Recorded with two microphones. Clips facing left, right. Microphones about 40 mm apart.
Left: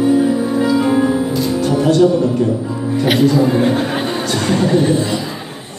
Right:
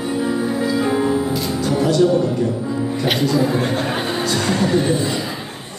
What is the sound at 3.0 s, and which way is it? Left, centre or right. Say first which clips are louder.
Chuckle: left 6 dB; centre.